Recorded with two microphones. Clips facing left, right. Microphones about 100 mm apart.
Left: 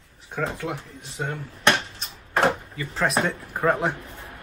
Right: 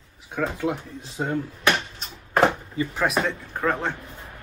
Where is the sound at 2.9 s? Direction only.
Centre (ahead or behind).